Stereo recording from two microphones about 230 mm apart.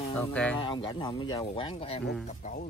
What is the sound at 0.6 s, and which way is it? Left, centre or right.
Speech, left.